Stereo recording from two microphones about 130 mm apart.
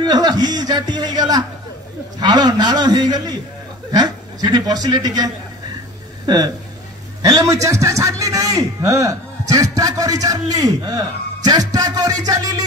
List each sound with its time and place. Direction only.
0.0 s a man's voice: 30° right (ahead or behind)